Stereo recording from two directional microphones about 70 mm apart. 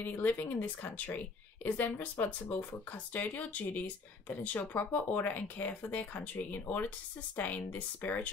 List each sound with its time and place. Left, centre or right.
0.0 s speech: left